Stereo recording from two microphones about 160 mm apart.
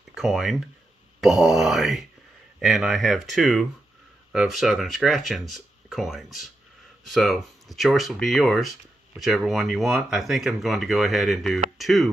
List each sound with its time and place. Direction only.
0.1 s speech: centre (ahead or behind)